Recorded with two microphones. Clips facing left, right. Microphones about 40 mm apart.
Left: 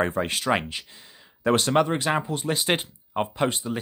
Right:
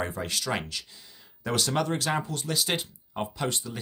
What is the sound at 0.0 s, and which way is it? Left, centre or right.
Speech, left.